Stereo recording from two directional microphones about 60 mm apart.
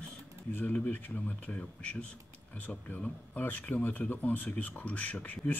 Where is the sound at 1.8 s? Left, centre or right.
Centre.